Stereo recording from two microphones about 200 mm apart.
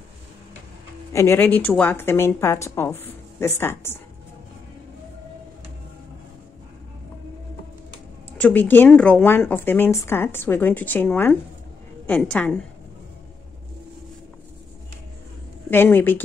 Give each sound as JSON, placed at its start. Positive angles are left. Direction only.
{"t": 1.1, "sound": "speech", "side_deg": 15}
{"t": 8.4, "sound": "a woman's voice", "side_deg": 10}
{"t": 15.7, "sound": "speech", "side_deg": 10}